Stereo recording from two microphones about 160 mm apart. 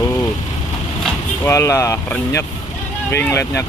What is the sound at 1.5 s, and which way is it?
Speech, 15° left (ahead or behind).